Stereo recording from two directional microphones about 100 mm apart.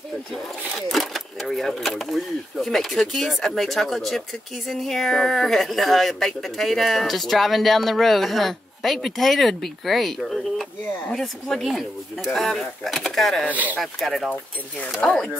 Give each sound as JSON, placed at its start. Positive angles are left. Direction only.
{"t": 0.3, "sound": "a woman's voice", "side_deg": 0}